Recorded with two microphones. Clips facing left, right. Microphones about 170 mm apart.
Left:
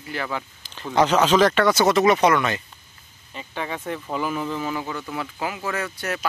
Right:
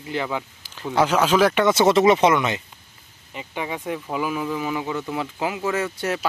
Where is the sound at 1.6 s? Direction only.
25° right (ahead or behind).